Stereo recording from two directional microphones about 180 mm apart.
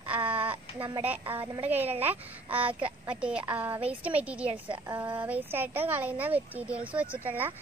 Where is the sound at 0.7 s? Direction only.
25° right (ahead or behind).